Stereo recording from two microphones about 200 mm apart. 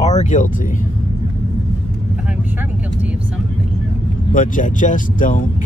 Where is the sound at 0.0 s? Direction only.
35° left (ahead or behind).